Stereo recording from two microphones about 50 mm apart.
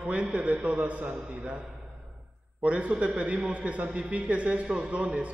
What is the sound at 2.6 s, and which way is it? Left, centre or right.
A man's voice, right.